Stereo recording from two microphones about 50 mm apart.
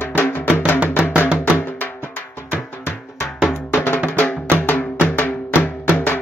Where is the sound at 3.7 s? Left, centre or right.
Left.